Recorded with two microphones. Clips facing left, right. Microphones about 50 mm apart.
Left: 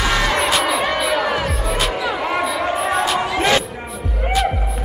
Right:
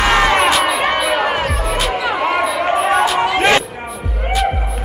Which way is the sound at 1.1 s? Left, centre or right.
Right.